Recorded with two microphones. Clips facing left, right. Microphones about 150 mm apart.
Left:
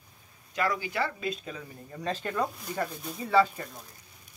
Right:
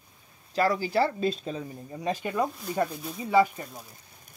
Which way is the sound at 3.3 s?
15° right (ahead or behind).